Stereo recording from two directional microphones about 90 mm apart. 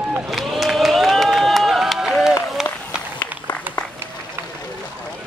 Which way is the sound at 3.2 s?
25° left (ahead or behind).